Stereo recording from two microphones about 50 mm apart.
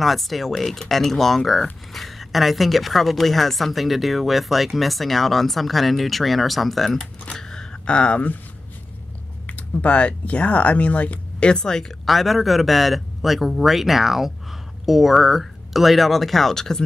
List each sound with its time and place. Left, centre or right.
0.0 s a woman's voice: centre
7.0 s speech: centre
9.5 s speech: left
12.1 s a woman's voice: centre